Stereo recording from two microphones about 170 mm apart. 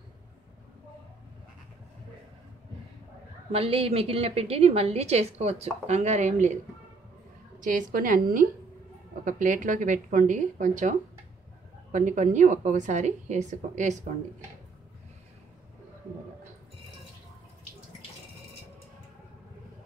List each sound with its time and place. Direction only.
3.5 s a woman's voice: 35° right (ahead or behind)
7.6 s a woman's voice: 50° right (ahead or behind)